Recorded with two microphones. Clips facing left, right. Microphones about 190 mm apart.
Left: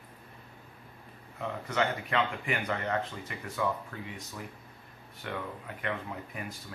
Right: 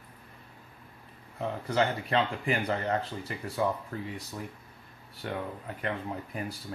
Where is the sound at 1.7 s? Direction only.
30° right (ahead or behind).